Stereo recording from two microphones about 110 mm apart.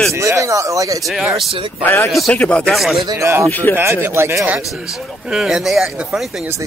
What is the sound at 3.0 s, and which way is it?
Speech, 30° right (ahead or behind).